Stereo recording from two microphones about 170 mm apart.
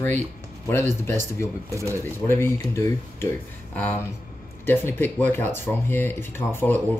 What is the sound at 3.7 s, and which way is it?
Speech, 10° left (ahead or behind).